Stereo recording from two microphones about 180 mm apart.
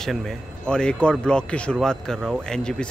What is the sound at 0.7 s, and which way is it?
Speech, 5° left (ahead or behind).